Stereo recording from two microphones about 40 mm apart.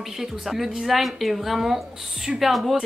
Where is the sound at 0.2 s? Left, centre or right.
Centre.